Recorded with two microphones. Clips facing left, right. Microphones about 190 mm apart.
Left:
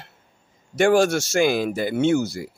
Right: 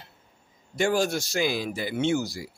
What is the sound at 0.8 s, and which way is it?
Speech, 85° left.